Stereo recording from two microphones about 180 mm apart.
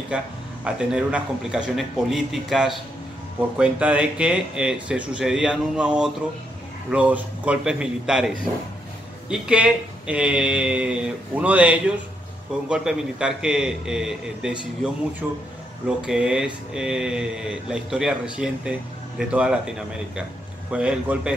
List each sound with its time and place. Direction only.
0.1 s speech: 5° right (ahead or behind)
20.7 s speech: 5° right (ahead or behind)